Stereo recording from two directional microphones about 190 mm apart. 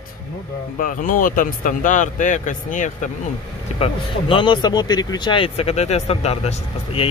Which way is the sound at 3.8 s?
25° left (ahead or behind).